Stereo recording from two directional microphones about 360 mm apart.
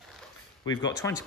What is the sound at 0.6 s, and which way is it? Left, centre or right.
Speech, centre.